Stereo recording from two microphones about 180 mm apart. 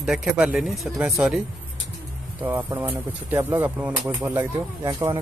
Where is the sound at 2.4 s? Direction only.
15° right (ahead or behind).